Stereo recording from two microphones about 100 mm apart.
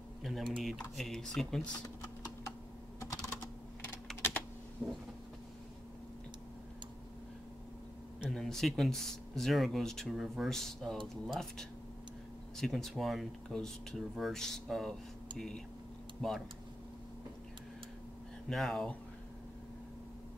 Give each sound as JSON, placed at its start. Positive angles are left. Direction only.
{"t": 0.2, "sound": "speech", "side_deg": 0}
{"t": 3.0, "sound": "typing", "side_deg": 30}
{"t": 4.8, "sound": "vehicle", "side_deg": -20}
{"t": 8.3, "sound": "speech", "side_deg": 5}
{"t": 12.5, "sound": "speech", "side_deg": 5}
{"t": 18.5, "sound": "speech", "side_deg": 0}